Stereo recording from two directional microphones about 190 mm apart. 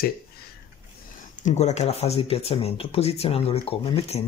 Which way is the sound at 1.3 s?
40° left (ahead or behind).